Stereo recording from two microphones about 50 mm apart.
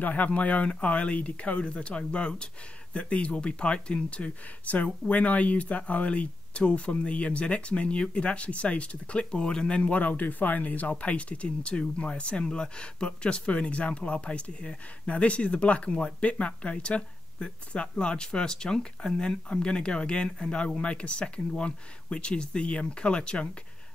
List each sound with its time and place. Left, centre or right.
0.0 s speech: left